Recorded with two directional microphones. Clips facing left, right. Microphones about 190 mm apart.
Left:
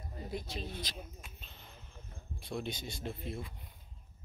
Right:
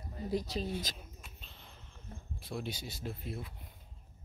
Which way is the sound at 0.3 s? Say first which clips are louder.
Right 7 dB; 35° right (ahead or behind).